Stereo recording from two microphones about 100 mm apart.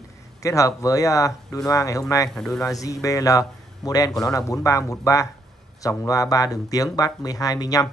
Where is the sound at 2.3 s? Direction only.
5° left (ahead or behind).